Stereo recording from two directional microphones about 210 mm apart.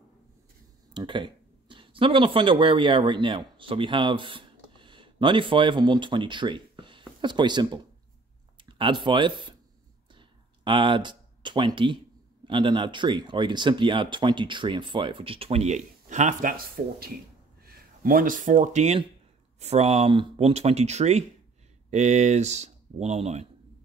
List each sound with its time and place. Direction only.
0.9 s speech: 25° right (ahead or behind)
10.1 s a sound: 25° right (ahead or behind)
12.4 s speech: 20° right (ahead or behind)